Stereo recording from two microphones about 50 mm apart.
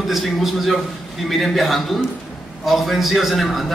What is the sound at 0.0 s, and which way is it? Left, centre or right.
A man's voice, centre.